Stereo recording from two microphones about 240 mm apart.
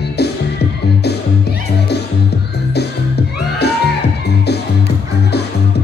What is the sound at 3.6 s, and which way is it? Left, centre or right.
Music, left.